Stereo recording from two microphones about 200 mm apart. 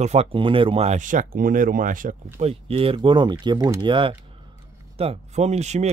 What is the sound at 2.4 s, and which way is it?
Speech, 30° right (ahead or behind).